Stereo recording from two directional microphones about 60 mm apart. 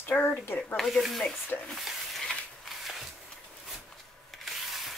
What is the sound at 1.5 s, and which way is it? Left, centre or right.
Speech, left.